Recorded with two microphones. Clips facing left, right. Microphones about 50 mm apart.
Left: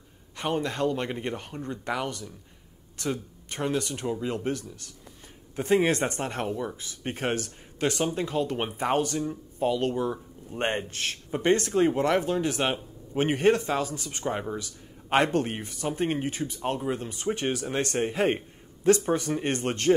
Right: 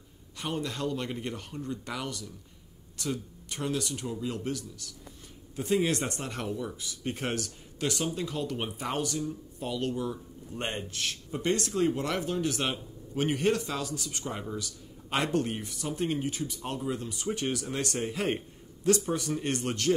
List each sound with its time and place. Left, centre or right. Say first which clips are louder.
0.4 s speech: left 6 dB; left